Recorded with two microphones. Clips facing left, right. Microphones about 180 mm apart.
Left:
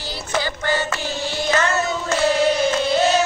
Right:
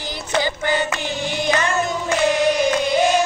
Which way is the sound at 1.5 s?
15° right (ahead or behind).